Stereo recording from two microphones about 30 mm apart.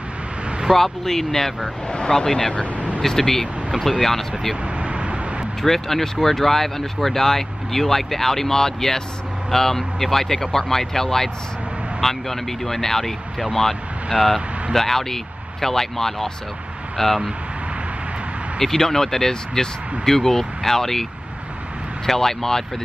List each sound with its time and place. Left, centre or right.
0.7 s speech: centre
1.9 s speech: left
2.5 s speech: left
3.0 s speech: centre
4.8 s vehicle: right
5.6 s speech: centre
14.1 s speech: centre
18.6 s speech: centre